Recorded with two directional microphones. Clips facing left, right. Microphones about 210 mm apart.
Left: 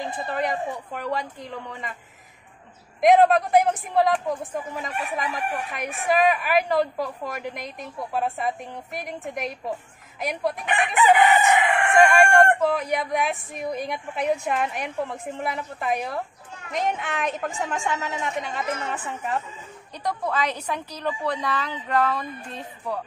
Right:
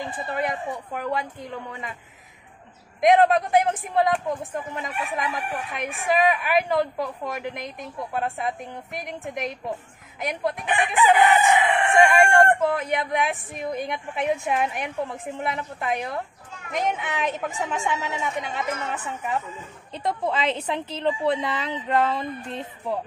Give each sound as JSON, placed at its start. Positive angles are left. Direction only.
{"t": 0.3, "sound": "chicken", "side_deg": 0}
{"t": 3.0, "sound": "chicken", "side_deg": 0}
{"t": 20.0, "sound": "a woman's voice", "side_deg": -25}